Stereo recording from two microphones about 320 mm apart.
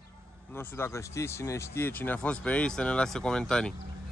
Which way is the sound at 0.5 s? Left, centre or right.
Centre.